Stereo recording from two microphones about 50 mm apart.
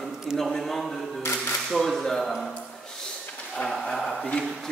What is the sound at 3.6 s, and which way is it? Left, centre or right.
Speech, centre.